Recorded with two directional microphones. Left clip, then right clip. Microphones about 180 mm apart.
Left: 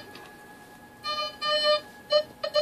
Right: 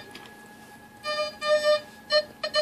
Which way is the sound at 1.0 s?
45° right (ahead or behind).